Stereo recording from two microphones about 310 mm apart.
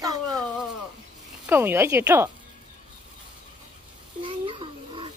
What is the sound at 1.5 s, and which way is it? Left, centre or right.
Speech, centre.